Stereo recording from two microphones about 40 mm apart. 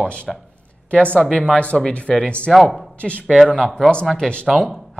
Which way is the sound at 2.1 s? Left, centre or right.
Left.